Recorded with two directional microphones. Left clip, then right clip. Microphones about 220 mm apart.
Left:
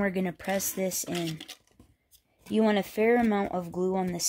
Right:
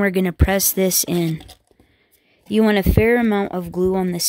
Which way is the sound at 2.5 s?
35° right (ahead or behind).